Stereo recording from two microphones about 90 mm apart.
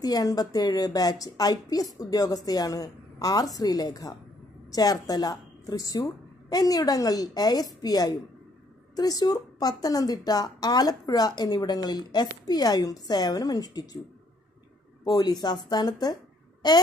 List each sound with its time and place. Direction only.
0.0 s a woman's voice: 45° left (ahead or behind)
15.0 s a woman's voice: 45° left (ahead or behind)